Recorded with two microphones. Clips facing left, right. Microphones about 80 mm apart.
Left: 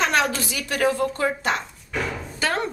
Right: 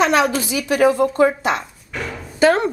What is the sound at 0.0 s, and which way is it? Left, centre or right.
Speech, centre.